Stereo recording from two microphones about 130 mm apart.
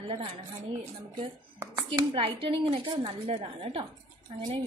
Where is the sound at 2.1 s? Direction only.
45° right (ahead or behind).